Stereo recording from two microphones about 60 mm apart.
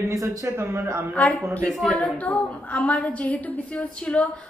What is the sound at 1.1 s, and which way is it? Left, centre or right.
Speech, left.